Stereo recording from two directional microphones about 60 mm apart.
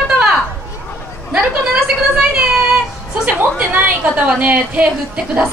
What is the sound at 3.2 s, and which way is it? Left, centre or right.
A woman's voice, right.